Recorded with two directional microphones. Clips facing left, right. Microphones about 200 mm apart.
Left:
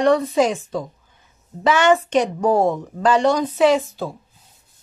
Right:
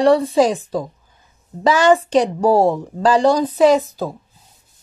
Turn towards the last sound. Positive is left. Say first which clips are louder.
# right 3 dB
turn(degrees=-40)  # may be behind; listen again after turning